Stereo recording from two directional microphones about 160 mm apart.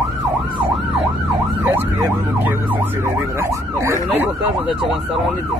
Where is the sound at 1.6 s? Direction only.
15° right (ahead or behind).